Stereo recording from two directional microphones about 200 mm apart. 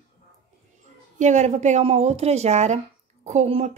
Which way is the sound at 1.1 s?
35° right (ahead or behind).